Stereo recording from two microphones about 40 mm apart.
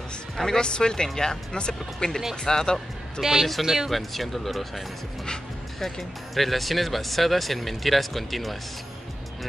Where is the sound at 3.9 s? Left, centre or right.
Centre.